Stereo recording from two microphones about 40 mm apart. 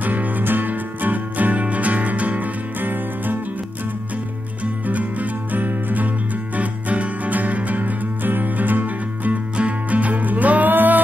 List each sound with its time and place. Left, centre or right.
0.0 s music: right
4.8 s music: right